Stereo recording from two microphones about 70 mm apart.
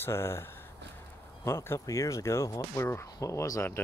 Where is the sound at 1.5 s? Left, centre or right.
Left.